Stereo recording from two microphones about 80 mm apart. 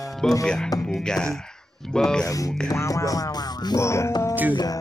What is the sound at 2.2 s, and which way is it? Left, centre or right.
Music, left.